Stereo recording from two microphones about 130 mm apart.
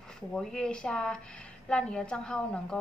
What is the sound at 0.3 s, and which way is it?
A woman's voice, 5° left (ahead or behind).